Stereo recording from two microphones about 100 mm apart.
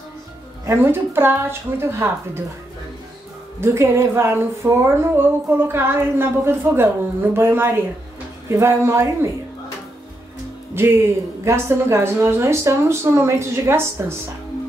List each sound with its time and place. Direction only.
0.7 s speech: 20° right (ahead or behind)
3.6 s speech: 30° right (ahead or behind)
10.7 s speech: 25° right (ahead or behind)